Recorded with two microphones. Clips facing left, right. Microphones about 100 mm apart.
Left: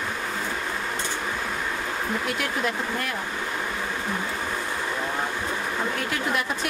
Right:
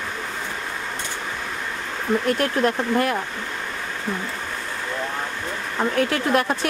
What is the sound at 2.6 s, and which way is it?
Speech, 55° right (ahead or behind).